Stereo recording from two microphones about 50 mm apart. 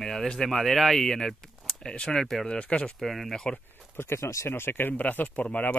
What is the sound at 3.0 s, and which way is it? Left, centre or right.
Speech, centre.